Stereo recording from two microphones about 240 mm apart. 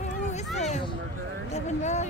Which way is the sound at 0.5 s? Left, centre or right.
Left.